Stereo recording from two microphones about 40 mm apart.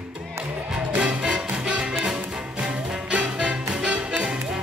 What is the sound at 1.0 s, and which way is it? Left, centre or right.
Music, right.